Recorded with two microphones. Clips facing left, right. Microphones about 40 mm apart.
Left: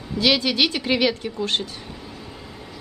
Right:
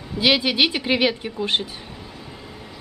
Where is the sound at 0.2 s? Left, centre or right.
Centre.